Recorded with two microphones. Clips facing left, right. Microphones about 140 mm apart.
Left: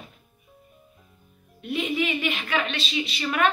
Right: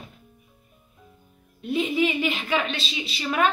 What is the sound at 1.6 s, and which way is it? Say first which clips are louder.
Speech: right 3 dB; 30° right (ahead or behind).